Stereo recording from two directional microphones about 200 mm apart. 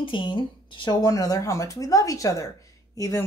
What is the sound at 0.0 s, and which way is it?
Speech, 25° left (ahead or behind).